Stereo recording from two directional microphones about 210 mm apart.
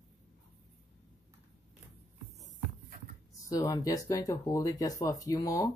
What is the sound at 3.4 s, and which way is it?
Speech, 15° left (ahead or behind).